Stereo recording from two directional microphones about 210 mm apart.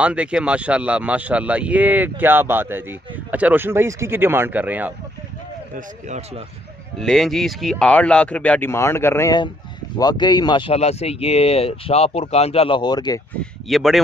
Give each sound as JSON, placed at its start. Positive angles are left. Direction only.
{"t": 0.0, "sound": "speech", "side_deg": -5}
{"t": 5.8, "sound": "speech", "side_deg": -35}
{"t": 7.0, "sound": "speech", "side_deg": 0}
{"t": 13.4, "sound": "speech", "side_deg": 0}